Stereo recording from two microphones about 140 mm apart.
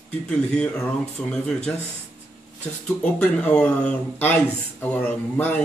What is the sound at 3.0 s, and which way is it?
Speech, 10° left (ahead or behind).